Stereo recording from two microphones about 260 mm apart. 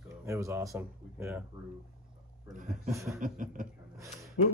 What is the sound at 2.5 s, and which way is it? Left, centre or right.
Speech, right.